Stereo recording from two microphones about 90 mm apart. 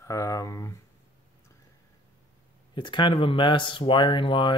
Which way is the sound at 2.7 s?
60° left (ahead or behind).